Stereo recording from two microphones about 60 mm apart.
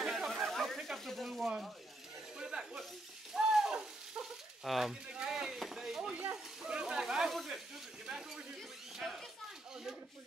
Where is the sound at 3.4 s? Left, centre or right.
Centre.